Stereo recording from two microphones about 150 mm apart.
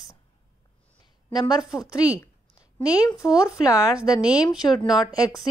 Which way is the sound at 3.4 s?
25° left (ahead or behind).